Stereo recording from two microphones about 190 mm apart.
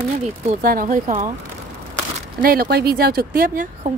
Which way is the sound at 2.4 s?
55° right (ahead or behind).